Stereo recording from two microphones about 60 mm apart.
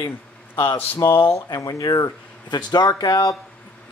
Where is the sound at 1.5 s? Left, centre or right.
Left.